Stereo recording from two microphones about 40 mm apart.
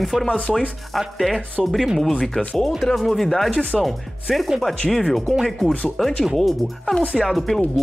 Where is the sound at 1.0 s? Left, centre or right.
Centre.